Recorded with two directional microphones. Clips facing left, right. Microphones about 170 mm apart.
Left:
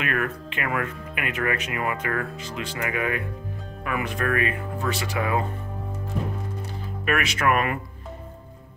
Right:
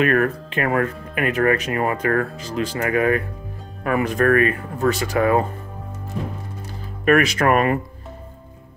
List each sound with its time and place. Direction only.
0.0 s speech: 40° right (ahead or behind)
7.1 s speech: 40° right (ahead or behind)